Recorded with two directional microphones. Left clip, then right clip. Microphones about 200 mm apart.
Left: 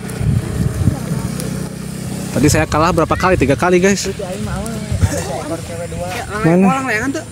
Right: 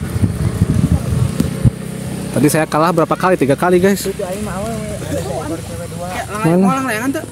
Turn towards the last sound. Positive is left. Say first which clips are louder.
# left 1 dB
turn(degrees=-50)  # may be behind; listen again after turning